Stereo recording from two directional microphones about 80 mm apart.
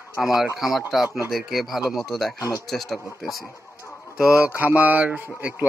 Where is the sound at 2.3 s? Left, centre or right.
Left.